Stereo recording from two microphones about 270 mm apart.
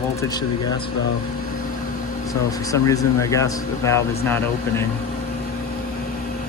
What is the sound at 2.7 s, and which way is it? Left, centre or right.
Speech, centre.